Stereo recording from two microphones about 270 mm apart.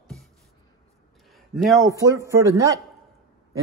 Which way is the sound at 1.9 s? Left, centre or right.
Centre.